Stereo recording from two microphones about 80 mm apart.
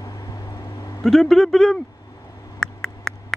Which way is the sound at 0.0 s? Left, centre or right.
Left.